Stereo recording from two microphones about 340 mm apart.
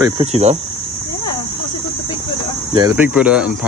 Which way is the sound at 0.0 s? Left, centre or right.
Centre.